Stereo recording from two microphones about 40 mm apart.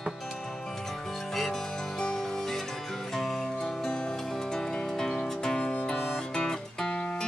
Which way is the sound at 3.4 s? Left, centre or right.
Centre.